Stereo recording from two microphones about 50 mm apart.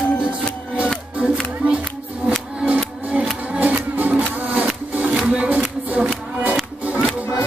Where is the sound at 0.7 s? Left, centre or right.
Right.